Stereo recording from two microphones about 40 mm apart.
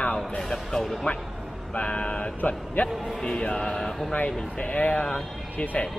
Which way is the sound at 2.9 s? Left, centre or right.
Centre.